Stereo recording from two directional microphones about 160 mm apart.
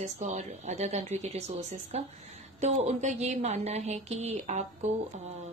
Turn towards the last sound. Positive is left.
turn(degrees=-45)  # may be behind; listen again after turning